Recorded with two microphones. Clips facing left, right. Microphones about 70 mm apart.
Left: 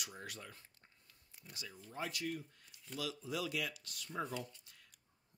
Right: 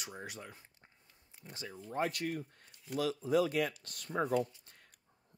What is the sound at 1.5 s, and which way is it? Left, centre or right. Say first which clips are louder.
Speech: right 6 dB; right.